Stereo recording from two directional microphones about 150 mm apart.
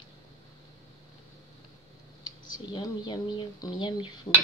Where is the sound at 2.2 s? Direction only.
30° left (ahead or behind).